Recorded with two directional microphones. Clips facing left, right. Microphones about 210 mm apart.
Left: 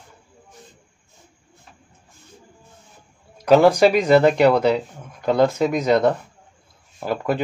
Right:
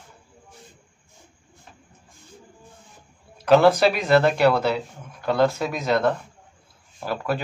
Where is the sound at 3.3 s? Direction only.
15° left (ahead or behind).